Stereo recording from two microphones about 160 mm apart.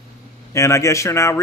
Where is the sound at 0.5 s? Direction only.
20° left (ahead or behind).